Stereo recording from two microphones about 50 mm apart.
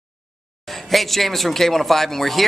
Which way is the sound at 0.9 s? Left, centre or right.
Centre.